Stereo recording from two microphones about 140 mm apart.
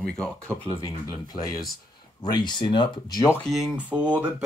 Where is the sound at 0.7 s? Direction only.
25° left (ahead or behind).